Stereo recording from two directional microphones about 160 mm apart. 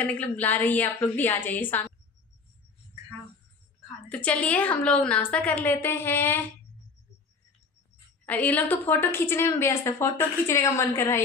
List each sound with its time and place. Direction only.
0.0 s a woman's voice: 10° left (ahead or behind)
4.1 s a woman's voice: 10° left (ahead or behind)
8.3 s a woman's voice: 10° left (ahead or behind)